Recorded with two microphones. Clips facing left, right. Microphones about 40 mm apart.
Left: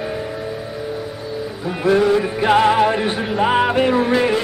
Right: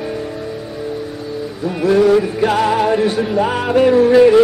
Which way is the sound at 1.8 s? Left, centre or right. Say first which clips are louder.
Right 3 dB; centre.